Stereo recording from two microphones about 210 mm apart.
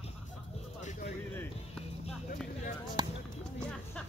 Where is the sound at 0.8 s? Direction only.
35° left (ahead or behind).